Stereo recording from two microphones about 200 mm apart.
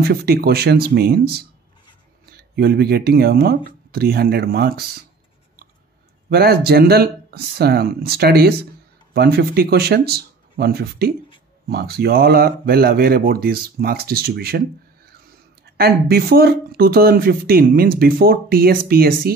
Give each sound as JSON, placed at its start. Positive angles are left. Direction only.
{"t": 0.0, "sound": "speech", "side_deg": -50}
{"t": 6.3, "sound": "speech", "side_deg": -50}
{"t": 15.6, "sound": "speech", "side_deg": -50}